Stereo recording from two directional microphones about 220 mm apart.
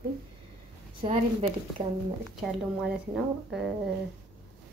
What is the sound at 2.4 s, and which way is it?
A woman's voice, centre (ahead or behind).